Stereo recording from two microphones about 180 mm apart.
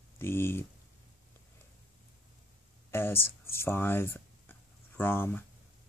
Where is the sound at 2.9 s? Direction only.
15° left (ahead or behind).